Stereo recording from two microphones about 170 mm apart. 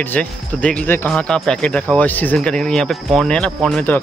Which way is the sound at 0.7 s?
5° left (ahead or behind).